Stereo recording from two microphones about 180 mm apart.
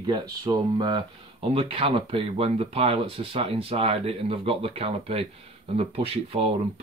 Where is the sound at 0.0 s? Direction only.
25° right (ahead or behind).